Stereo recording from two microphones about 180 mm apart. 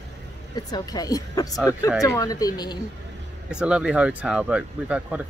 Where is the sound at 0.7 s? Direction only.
20° left (ahead or behind).